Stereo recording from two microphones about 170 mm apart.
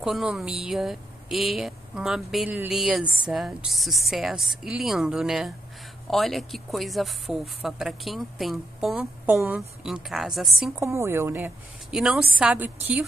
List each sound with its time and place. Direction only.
0.0 s speech: 5° right (ahead or behind)
10.8 s a woman's voice: 15° right (ahead or behind)